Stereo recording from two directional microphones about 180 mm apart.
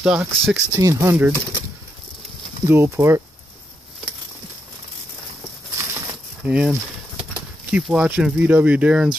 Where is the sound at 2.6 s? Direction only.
15° right (ahead or behind).